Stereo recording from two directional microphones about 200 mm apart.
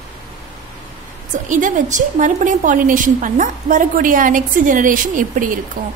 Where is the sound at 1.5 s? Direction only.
40° right (ahead or behind).